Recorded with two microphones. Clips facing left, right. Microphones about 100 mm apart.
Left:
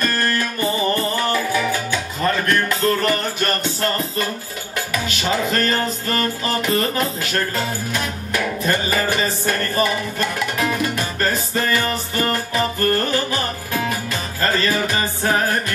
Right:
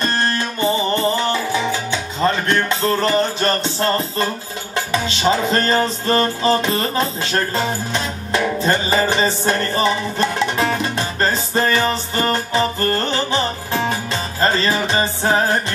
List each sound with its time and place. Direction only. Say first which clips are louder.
0.0 s music: right 1 dB; 25° right (ahead or behind)